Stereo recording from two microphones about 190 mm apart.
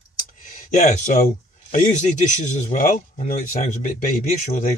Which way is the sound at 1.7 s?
40° left (ahead or behind).